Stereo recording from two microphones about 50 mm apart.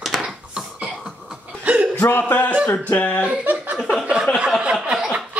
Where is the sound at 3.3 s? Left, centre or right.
Right.